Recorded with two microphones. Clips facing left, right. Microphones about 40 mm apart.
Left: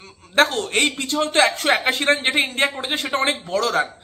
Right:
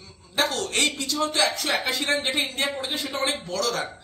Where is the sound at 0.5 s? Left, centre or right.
Left.